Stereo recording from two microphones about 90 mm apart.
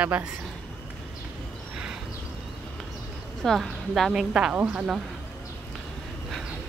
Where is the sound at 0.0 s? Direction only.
15° right (ahead or behind).